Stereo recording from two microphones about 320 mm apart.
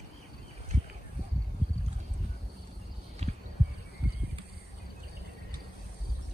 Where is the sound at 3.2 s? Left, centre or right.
Centre.